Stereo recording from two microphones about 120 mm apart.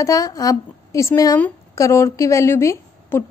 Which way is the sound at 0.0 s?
30° left (ahead or behind).